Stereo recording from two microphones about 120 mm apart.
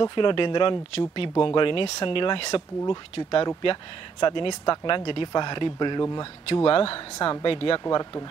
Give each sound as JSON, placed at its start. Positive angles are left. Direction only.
{"t": 0.0, "sound": "speech", "side_deg": 40}
{"t": 7.8, "sound": "speech", "side_deg": 35}